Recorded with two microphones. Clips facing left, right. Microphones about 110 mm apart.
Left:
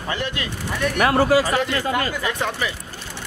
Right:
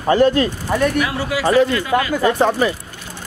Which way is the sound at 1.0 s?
50° left (ahead or behind).